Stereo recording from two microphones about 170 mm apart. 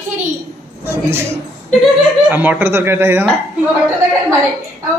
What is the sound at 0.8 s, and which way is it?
Speech, 15° right (ahead or behind).